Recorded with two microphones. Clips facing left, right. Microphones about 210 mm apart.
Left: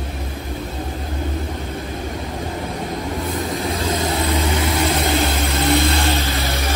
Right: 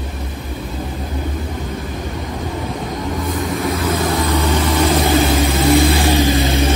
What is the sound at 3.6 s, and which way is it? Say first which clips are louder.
Vehicle: right 3 dB; 30° left (ahead or behind).